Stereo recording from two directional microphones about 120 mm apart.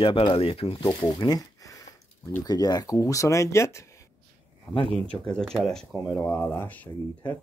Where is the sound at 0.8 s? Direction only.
35° left (ahead or behind).